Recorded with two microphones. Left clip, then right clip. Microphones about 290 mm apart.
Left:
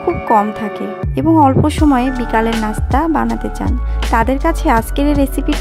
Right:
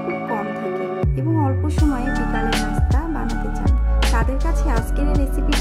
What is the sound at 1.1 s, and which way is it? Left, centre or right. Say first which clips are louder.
Speech: left 18 dB; left.